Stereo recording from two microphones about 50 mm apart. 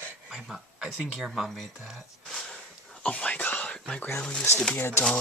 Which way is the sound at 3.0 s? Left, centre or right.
Left.